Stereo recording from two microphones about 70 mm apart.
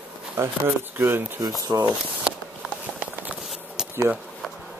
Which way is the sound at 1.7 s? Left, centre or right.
Right.